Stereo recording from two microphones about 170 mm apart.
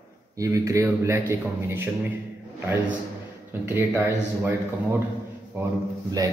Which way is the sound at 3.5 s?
10° right (ahead or behind).